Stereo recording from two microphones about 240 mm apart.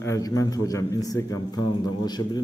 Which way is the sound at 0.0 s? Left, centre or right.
Centre.